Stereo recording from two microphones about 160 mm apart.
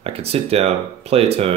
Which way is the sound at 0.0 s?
40° right (ahead or behind).